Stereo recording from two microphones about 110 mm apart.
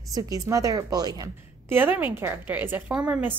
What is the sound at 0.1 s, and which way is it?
A woman's voice, 35° right (ahead or behind).